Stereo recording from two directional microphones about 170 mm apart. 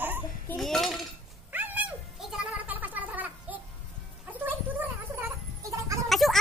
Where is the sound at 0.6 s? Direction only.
Centre (ahead or behind).